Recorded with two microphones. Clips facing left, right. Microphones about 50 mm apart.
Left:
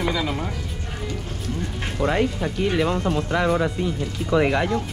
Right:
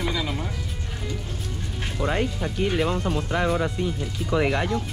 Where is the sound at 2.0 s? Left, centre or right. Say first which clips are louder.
Left 4 dB; left.